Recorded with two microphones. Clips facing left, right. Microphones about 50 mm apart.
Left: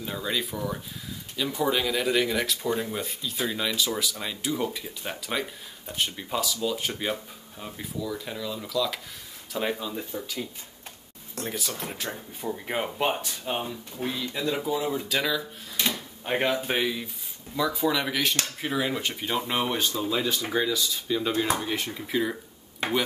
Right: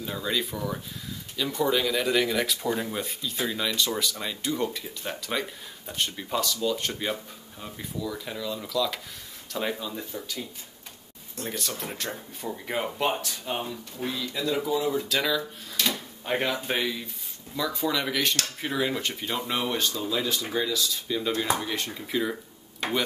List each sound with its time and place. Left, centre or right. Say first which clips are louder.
0.0 s speech: right 1 dB; centre
11.4 s speech: even; centre
15.8 s drawer open or close: even; left
16.3 s speech: left 2 dB; centre
19.3 s speech: left 2 dB; left
19.7 s speech: left 1 dB; centre